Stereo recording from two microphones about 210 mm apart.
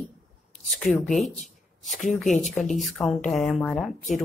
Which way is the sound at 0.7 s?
Centre (ahead or behind).